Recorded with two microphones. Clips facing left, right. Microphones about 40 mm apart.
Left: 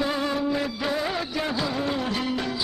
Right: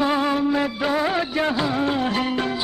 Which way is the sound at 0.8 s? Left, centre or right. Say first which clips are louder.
Right 5 dB; right.